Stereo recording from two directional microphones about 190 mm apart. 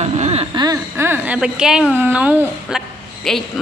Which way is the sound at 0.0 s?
35° right (ahead or behind).